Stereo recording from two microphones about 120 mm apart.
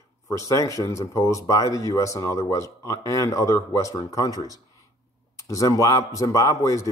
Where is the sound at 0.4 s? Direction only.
25° left (ahead or behind).